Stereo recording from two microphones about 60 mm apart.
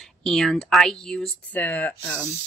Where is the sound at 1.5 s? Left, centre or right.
Left.